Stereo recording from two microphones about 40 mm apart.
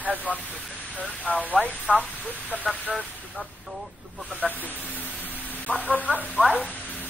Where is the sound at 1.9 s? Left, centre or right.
Right.